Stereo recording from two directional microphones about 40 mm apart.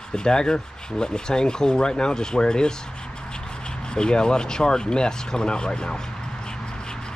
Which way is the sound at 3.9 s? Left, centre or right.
Left.